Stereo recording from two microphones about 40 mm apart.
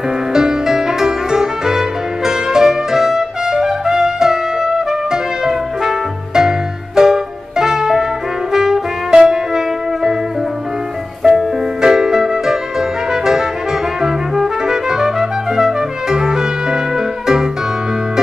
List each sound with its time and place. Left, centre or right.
0.3 s music: centre
8.5 s brass instrument: centre
9.1 s music: centre
11.2 s music: centre
13.1 s brass instrument: centre
14.0 s music: centre